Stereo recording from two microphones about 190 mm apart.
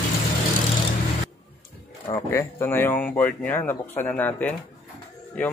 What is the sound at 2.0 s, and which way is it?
Speech, 15° left (ahead or behind).